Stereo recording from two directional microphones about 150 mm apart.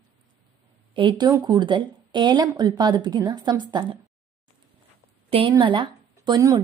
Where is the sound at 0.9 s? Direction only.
30° right (ahead or behind).